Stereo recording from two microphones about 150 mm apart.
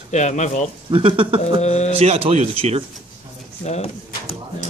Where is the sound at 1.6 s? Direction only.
50° left (ahead or behind).